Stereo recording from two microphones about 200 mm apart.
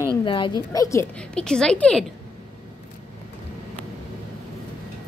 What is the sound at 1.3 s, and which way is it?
Speech, 5° left (ahead or behind).